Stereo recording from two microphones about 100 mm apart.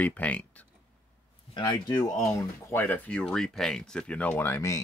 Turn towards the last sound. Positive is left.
turn(degrees=30)  # may be behind; listen again after turning